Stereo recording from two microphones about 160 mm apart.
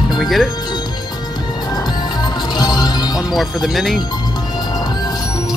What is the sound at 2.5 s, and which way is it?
Music, 25° left (ahead or behind).